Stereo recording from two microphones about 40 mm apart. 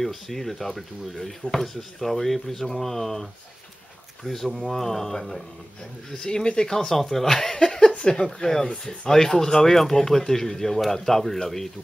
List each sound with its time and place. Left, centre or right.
0.0 s speech: centre; by 6.7 s left
6.7 s speech: centre